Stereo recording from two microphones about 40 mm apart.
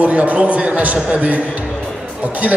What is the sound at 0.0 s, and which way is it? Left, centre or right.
Speech, right.